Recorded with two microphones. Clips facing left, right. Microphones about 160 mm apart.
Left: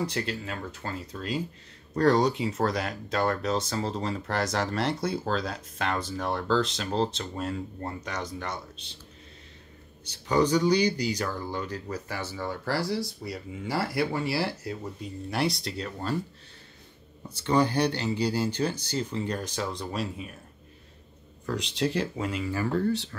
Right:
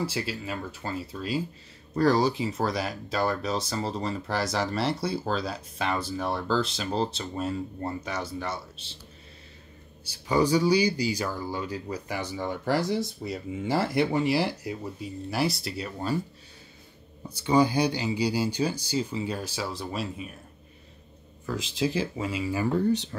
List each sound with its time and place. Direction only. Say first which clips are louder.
0.0 s speech: even; 5° right (ahead or behind)
10.0 s speech: even; 10° right (ahead or behind)
17.3 s speech: right 2 dB; 10° right (ahead or behind)
21.5 s speech: even; 5° right (ahead or behind)